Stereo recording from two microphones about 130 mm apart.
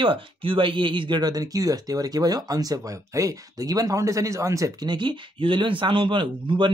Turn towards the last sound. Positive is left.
turn(degrees=-40)  # may be behind; listen again after turning